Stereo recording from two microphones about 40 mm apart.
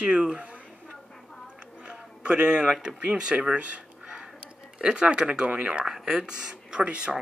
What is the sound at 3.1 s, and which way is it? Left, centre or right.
Speech, right.